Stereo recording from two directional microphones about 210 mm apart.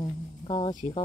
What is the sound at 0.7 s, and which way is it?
Speech, 35° left (ahead or behind).